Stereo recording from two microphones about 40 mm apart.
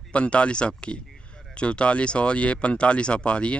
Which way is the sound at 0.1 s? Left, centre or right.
Left.